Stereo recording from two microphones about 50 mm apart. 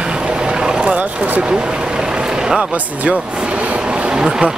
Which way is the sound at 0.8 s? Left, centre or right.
Right.